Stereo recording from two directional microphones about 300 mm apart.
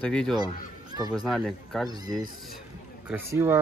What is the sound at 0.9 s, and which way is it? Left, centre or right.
Speech, centre.